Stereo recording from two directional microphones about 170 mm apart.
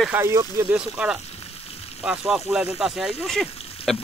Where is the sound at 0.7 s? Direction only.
5° right (ahead or behind).